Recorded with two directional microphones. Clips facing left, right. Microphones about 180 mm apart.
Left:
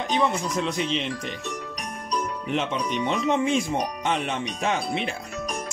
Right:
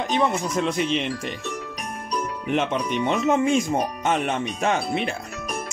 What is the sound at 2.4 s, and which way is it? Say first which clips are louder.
Speech: right 6 dB; 55° right (ahead or behind).